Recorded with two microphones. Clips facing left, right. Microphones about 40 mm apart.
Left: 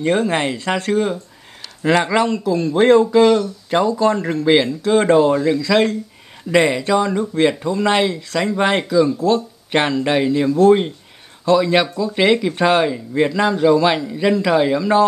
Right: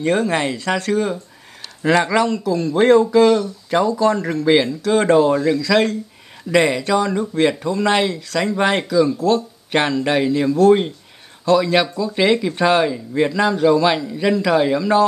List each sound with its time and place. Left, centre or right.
0.0 s speech: centre